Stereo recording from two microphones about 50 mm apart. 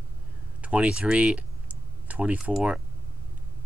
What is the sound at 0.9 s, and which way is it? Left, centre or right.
Typing, right.